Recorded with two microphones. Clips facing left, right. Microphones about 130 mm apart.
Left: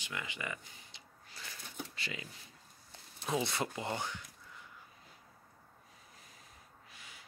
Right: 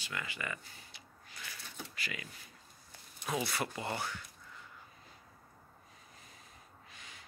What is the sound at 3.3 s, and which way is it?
Speech, 25° left (ahead or behind).